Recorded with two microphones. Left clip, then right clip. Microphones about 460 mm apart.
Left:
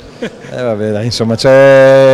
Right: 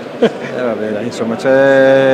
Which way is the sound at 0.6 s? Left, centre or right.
Left.